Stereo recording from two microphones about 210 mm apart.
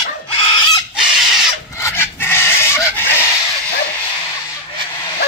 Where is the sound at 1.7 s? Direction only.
10° left (ahead or behind).